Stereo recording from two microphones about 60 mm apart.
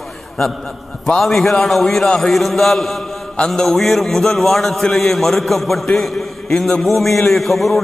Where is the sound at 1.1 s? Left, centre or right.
Centre.